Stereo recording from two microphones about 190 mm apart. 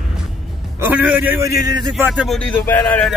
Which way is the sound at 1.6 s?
20° right (ahead or behind).